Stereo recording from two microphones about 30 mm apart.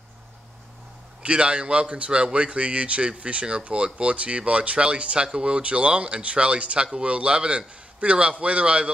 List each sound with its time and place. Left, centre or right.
1.2 s speech: right